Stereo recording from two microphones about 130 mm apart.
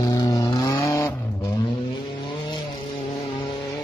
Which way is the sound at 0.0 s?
30° left (ahead or behind).